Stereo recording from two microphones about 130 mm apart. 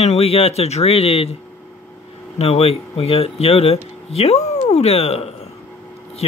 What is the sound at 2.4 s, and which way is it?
Speech, 50° left (ahead or behind).